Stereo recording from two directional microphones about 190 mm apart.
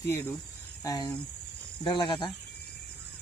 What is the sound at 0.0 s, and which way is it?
Speech, 15° left (ahead or behind).